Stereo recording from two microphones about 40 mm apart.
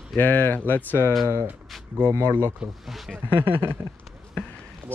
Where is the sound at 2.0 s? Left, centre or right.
Right.